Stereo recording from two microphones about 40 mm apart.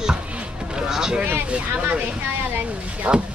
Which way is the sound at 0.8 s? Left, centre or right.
Centre.